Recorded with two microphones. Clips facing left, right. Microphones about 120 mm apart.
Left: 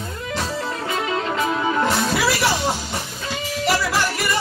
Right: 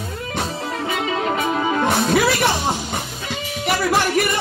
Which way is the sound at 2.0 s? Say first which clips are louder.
Right 3 dB; 50° right (ahead or behind).